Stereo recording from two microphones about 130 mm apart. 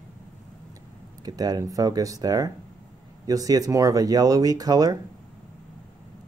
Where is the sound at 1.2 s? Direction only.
30° right (ahead or behind).